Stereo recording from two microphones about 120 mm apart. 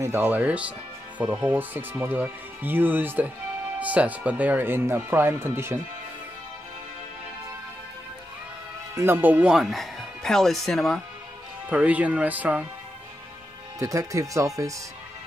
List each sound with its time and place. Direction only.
0.0 s speech: 20° right (ahead or behind)
8.9 s speech: 20° right (ahead or behind); by 11.0 s centre (ahead or behind)
11.7 s speech: 10° right (ahead or behind)
13.7 s speech: 25° right (ahead or behind)